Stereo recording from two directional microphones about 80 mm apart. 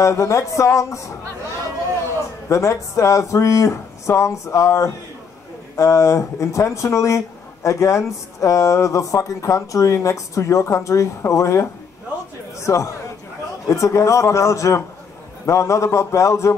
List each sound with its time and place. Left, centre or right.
0.0 s speech: left
2.5 s speech: left